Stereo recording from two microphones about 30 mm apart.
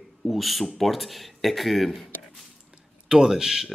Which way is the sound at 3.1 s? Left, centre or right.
Right.